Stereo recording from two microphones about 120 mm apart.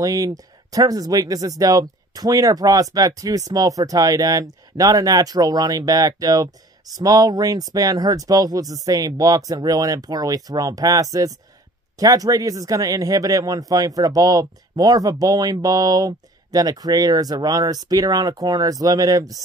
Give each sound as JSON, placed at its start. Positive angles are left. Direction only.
{"t": 0.0, "sound": "speech", "side_deg": -30}